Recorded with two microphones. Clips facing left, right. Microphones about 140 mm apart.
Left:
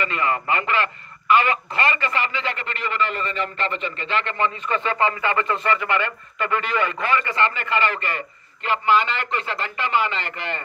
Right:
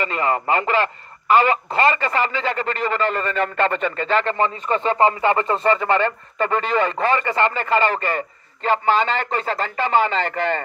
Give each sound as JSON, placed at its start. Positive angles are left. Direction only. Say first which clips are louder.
{"t": 0.0, "sound": "a man's voice", "louder": "right 2 dB", "side_deg": -40}